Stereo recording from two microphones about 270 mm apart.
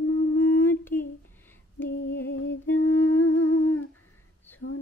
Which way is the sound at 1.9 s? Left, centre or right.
Left.